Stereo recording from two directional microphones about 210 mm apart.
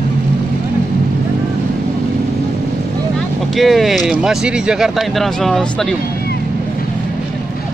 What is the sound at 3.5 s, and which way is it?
Speech, centre (ahead or behind).